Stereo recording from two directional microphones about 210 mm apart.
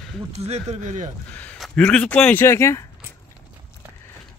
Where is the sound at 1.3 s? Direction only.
5° left (ahead or behind).